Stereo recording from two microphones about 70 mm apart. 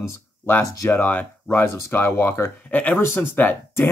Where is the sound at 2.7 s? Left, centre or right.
Left.